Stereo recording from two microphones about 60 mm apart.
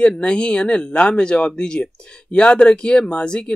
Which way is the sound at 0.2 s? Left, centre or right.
Centre.